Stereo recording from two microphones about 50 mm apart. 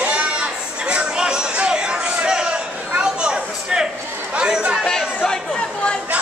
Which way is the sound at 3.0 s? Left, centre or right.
Centre.